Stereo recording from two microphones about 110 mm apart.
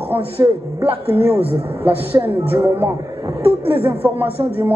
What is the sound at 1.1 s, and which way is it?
Speech, 65° right (ahead or behind).